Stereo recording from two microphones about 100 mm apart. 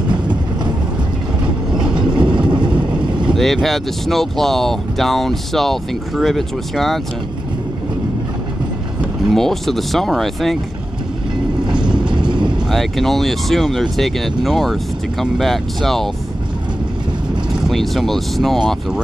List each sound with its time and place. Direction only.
0.1 s vehicle: 50° right (ahead or behind)
1.7 s vehicle: 10° right (ahead or behind)
2.1 s boat: 50° right (ahead or behind)
3.3 s speech: centre (ahead or behind)
9.3 s speech: centre (ahead or behind)
11.6 s train: 50° right (ahead or behind)
12.1 s vehicle: 50° right (ahead or behind)
12.6 s speech: centre (ahead or behind)
17.6 s speech: centre (ahead or behind)